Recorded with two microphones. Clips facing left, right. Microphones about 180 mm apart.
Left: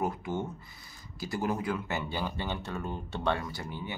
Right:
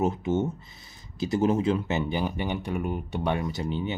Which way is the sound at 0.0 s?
20° right (ahead or behind).